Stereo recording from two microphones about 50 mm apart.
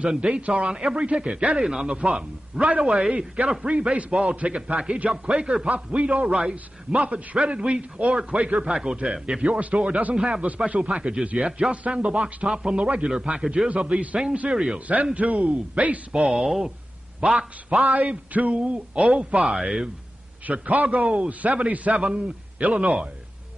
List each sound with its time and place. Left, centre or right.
0.5 s a man's voice: centre
2.0 s a man's voice: right
9.4 s a man's voice: right
10.1 s a man's voice: centre
15.1 s a man's voice: right
16.2 s a man's voice: centre
17.6 s a man's voice: right; by 19.9 s centre
20.5 s a man's voice: right